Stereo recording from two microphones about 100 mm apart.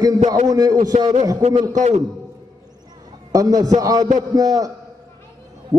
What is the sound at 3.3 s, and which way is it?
A man's voice, 35° right (ahead or behind).